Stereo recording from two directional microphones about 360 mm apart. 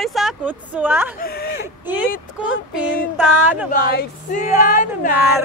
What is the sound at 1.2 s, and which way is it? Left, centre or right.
Speech, left.